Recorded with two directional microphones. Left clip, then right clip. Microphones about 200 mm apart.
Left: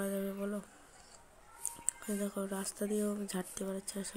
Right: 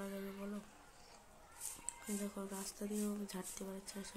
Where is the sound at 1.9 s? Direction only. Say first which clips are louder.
Left 7 dB; 25° left (ahead or behind).